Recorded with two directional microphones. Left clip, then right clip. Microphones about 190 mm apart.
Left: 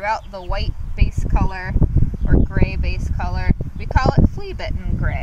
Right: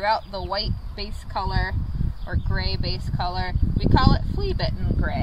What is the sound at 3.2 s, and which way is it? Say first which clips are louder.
Speech: even; 15° left (ahead or behind).